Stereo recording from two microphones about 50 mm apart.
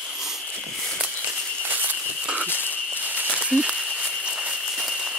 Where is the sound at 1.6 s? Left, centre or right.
Right.